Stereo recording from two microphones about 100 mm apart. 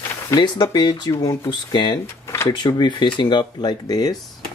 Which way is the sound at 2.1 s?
30° left (ahead or behind).